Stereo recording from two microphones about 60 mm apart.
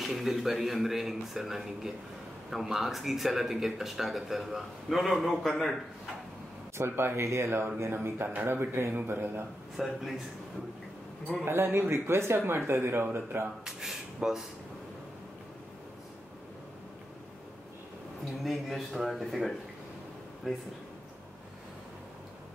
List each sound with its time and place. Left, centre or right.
0.0 s a man's voice: centre
6.8 s speech: right
9.8 s a man's voice: centre
11.4 s speech: right
13.7 s speech: centre
18.4 s a man's voice: centre